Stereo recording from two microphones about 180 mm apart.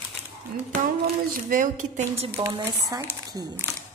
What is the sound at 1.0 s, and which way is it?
Speech, 45° right (ahead or behind).